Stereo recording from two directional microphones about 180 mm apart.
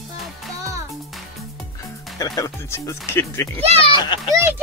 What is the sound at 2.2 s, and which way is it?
Speech, 15° left (ahead or behind).